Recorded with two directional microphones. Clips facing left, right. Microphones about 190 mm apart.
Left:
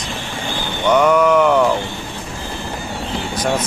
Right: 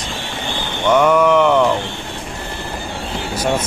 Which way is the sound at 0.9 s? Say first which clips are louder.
Even; centre (ahead or behind).